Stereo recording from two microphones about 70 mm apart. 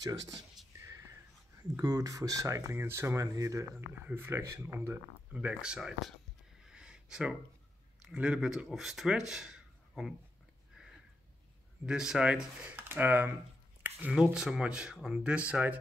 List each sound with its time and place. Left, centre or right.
0.0 s speech: right
0.8 s whispering: right
1.6 s speech: right
2.7 s speech: right
3.3 s speech: right
4.1 s speech: right
5.3 s speech: centre
6.7 s a sound: centre
8.0 s speech: centre
11.8 s speech: centre
12.8 s speech: right
14.3 s speech: centre